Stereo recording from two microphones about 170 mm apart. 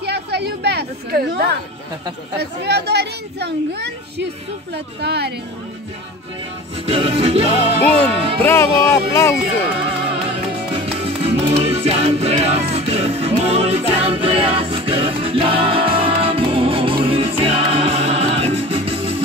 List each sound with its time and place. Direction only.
0.0 s chatter: 75° right (ahead or behind)
2.3 s a child's voice: 75° right (ahead or behind)
6.9 s music: 35° right (ahead or behind)
8.5 s speech: 15° left (ahead or behind)
10.2 s music: 35° right (ahead or behind)